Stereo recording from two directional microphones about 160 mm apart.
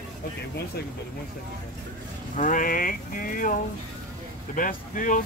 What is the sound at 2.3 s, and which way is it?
Speech, 55° left (ahead or behind).